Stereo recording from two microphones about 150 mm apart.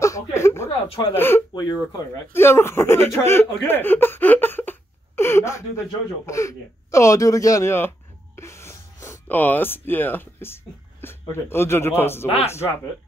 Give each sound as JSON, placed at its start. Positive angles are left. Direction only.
{"t": 0.0, "sound": "a sound", "side_deg": 20}
{"t": 0.7, "sound": "speech", "side_deg": 30}
{"t": 1.1, "sound": "speech", "side_deg": 15}
{"t": 1.5, "sound": "speech", "side_deg": 25}